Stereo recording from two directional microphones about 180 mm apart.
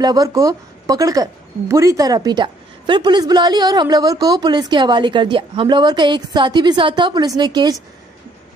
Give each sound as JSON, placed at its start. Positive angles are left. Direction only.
{"t": 0.0, "sound": "a woman's voice", "side_deg": -20}